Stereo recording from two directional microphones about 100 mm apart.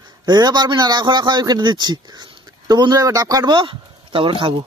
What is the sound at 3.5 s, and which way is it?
Speech, 55° right (ahead or behind).